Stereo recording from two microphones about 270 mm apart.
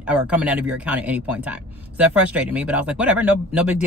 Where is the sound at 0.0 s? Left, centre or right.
Centre.